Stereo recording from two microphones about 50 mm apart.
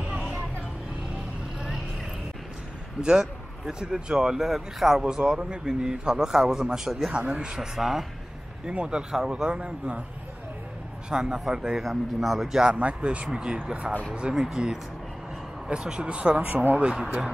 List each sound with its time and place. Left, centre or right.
3.0 s speech: centre
7.5 s speech: centre
11.1 s speech: centre
11.8 s a man's voice: centre
12.7 s speech: right